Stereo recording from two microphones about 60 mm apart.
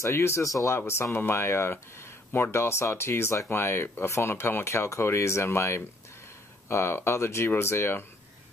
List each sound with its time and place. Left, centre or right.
0.1 s speech: left
0.4 s speech: left
0.7 s speech: left